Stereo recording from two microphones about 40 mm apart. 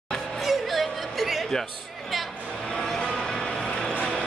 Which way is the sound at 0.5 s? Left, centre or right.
Centre.